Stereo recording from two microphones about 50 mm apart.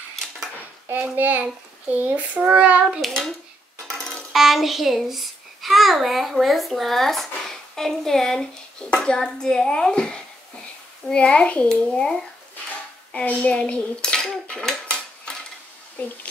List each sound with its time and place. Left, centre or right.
1.1 s a child's voice: right
3.0 s a child's voice: centre
4.3 s a child's voice: centre
13.1 s dishes: left